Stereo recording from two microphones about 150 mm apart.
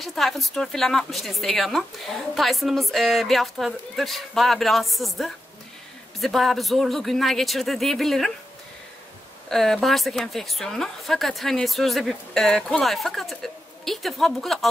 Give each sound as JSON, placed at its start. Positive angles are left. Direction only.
{"t": 0.0, "sound": "a woman's voice", "side_deg": 0}
{"t": 9.5, "sound": "a woman's voice", "side_deg": 5}